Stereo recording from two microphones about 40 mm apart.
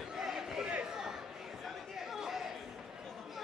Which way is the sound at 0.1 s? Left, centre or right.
Centre.